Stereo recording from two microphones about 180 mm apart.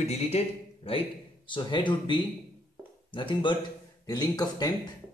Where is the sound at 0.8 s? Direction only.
30° left (ahead or behind).